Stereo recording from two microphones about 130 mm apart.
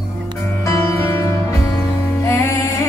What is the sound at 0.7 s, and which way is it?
Music, 20° left (ahead or behind).